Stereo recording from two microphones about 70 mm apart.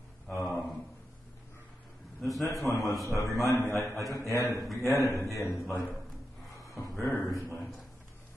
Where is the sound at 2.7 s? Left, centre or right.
Left.